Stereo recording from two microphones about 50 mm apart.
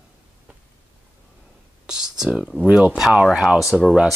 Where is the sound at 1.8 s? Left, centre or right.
Centre.